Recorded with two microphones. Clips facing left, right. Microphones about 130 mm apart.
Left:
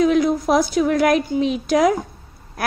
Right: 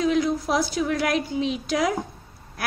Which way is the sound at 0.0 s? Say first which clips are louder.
Left 6 dB; 55° left (ahead or behind).